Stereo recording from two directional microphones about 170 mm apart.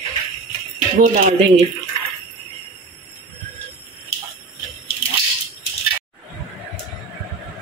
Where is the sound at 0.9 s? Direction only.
45° right (ahead or behind).